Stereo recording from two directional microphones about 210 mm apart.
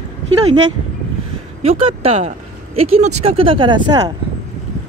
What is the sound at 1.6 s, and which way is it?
Speech, 30° right (ahead or behind).